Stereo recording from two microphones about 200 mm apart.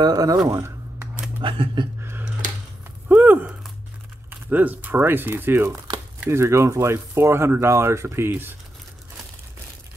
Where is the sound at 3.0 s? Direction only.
10° right (ahead or behind).